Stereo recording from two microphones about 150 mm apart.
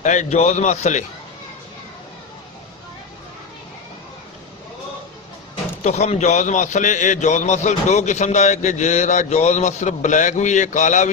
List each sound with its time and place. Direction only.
0.0 s a man's voice: 50° left (ahead or behind)
5.9 s a man's voice: 50° left (ahead or behind)